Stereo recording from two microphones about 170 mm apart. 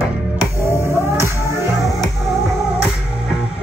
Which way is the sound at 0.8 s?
15° right (ahead or behind).